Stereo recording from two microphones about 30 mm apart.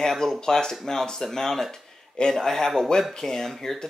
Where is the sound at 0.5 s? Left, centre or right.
Centre.